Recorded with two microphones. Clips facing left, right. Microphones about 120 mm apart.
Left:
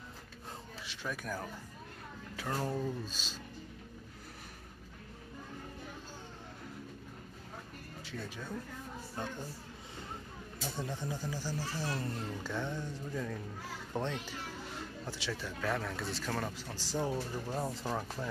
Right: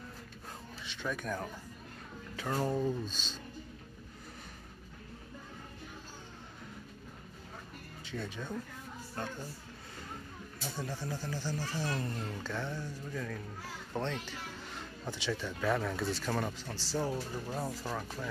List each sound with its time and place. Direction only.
0.8 s speech: 5° left (ahead or behind)
8.0 s speech: 5° left (ahead or behind)
10.6 s speech: 20° left (ahead or behind); by 12.5 s 5° left (ahead or behind)
12.5 s music: 20° left (ahead or behind)
13.9 s speech: 10° left (ahead or behind); by 16.5 s 5° right (ahead or behind)
16.5 s speech: 10° left (ahead or behind)
17.1 s speech: centre (ahead or behind)
17.6 s music: 20° left (ahead or behind)